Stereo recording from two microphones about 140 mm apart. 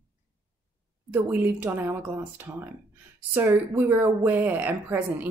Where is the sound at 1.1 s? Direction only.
15° right (ahead or behind).